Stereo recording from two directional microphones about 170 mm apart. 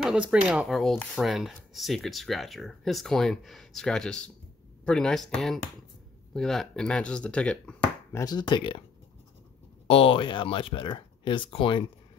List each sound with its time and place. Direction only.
0.0 s speech: 5° right (ahead or behind); by 8.8 s 30° left (ahead or behind)
9.8 s speech: 35° left (ahead or behind)